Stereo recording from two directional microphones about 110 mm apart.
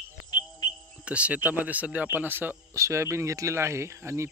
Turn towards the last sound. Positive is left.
turn(degrees=-25)  # may be behind; listen again after turning